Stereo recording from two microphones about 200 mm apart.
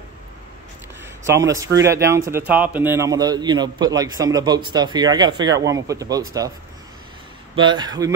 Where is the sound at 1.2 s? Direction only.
15° right (ahead or behind).